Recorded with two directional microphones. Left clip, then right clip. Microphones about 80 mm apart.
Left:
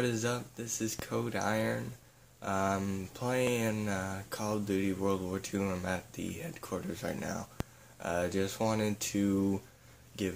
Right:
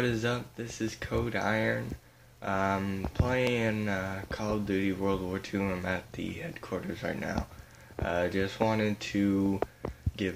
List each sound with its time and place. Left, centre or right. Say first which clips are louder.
0.0 s speech: right 3 dB; left